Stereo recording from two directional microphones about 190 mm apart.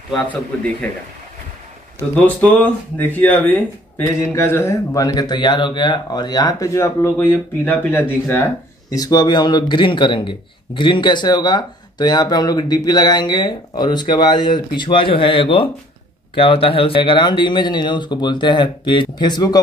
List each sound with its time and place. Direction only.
0.1 s speech: 5° left (ahead or behind)
2.1 s a man's voice: 5° left (ahead or behind)